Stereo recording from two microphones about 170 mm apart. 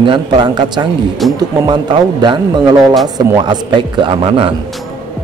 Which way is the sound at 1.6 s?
25° right (ahead or behind).